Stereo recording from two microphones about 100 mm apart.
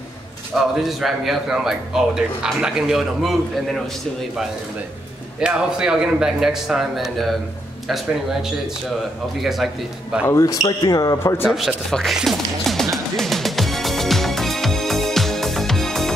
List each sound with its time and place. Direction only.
0.6 s a man's voice: centre (ahead or behind)
5.4 s a man's voice: 5° right (ahead or behind)
10.2 s speech: 35° left (ahead or behind)
11.4 s a man's voice: 5° right (ahead or behind)
12.9 s music: 5° left (ahead or behind)